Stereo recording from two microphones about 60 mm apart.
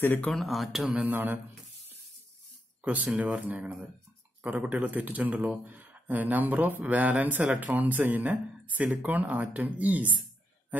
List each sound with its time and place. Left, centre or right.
0.3 s speech: centre
1.0 s speech: right
2.8 s speech: right